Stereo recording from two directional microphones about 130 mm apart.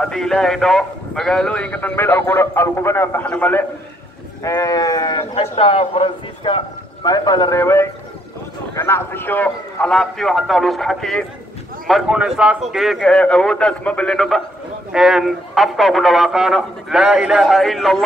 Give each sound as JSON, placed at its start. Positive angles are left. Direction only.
{"t": 0.0, "sound": "a man's voice", "side_deg": 5}
{"t": 4.4, "sound": "livestock", "side_deg": 25}
{"t": 5.3, "sound": "a man's voice", "side_deg": 45}
{"t": 7.5, "sound": "livestock", "side_deg": 20}
{"t": 8.7, "sound": "a man's voice", "side_deg": 20}